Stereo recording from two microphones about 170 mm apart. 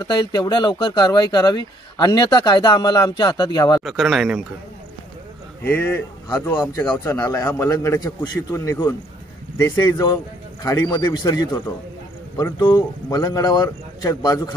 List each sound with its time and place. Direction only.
0.1 s speech: 25° left (ahead or behind)
3.8 s speech: centre (ahead or behind)
5.6 s speech: 10° left (ahead or behind)